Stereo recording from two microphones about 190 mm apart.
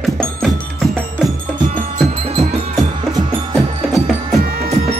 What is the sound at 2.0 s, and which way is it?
Music, 35° right (ahead or behind).